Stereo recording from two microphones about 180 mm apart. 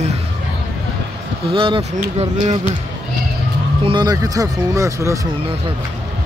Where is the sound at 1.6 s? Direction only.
30° right (ahead or behind).